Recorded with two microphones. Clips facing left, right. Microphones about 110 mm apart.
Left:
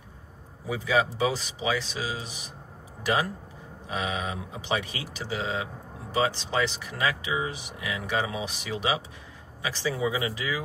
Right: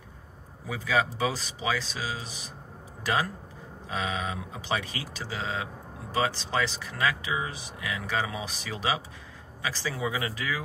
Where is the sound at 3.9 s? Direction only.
20° left (ahead or behind).